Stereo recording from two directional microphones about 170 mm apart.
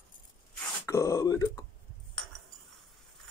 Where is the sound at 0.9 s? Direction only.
20° left (ahead or behind).